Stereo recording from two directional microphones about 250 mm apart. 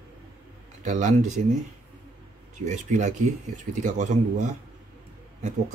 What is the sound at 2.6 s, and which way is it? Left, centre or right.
Speech, right.